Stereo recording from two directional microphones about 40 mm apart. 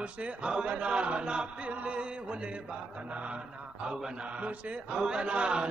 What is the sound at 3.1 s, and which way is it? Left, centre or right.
Speech, right.